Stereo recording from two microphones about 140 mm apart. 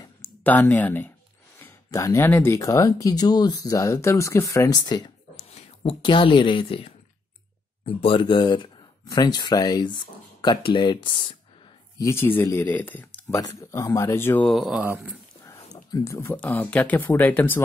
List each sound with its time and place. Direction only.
0.2 s speech: 10° left (ahead or behind); by 5.1 s 30° left (ahead or behind)
5.3 s a sound: 50° left (ahead or behind)
6.0 s speech: 35° left (ahead or behind)
12.0 s speech: 20° left (ahead or behind)
14.5 s speech: centre (ahead or behind)
15.4 s speech: 25° left (ahead or behind)